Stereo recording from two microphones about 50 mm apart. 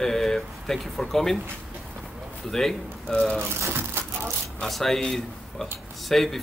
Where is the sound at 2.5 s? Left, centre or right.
Centre.